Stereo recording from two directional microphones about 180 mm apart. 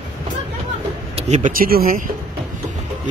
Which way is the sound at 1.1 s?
40° right (ahead or behind).